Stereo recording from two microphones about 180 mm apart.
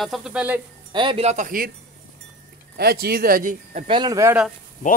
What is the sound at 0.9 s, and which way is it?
Speech, 30° right (ahead or behind).